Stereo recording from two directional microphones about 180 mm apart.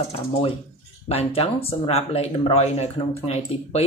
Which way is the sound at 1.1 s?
35° left (ahead or behind).